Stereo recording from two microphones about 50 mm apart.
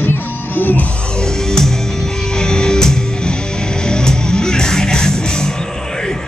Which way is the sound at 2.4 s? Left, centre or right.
Centre.